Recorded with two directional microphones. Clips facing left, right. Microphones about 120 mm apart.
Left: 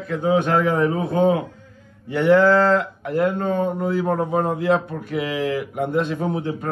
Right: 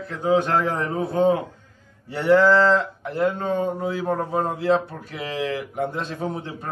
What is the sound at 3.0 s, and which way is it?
Speech, 50° left (ahead or behind).